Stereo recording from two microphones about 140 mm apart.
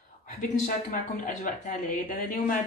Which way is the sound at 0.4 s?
75° left (ahead or behind).